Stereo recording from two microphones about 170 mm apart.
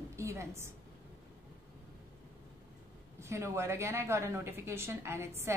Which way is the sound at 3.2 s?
15° right (ahead or behind).